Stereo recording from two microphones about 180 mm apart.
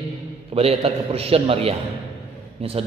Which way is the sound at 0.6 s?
35° right (ahead or behind).